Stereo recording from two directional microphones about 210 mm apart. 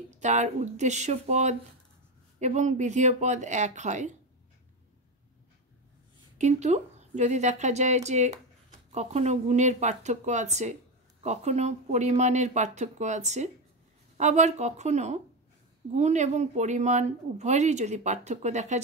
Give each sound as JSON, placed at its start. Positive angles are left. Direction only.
{"t": 0.2, "sound": "a woman's voice", "side_deg": -35}
{"t": 6.3, "sound": "a woman's voice", "side_deg": -35}